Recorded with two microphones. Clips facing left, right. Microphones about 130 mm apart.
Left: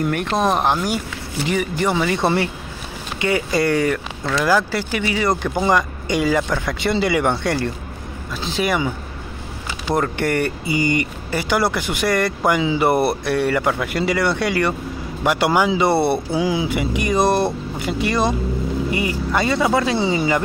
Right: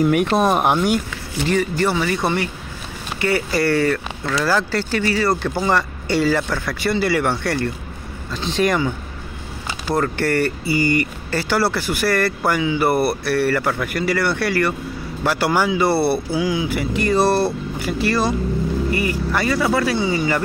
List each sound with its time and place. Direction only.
0.0 s speech: 10° right (ahead or behind)
1.4 s speech: 15° left (ahead or behind)
8.3 s speech: 5° left (ahead or behind)
9.9 s speech: 20° left (ahead or behind)